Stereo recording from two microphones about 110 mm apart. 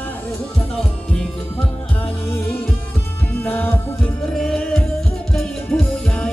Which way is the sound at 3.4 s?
20° left (ahead or behind).